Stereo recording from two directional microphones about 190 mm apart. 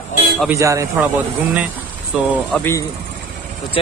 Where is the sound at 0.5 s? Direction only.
15° right (ahead or behind).